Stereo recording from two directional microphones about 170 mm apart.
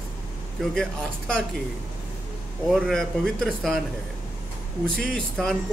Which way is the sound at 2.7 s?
Centre (ahead or behind).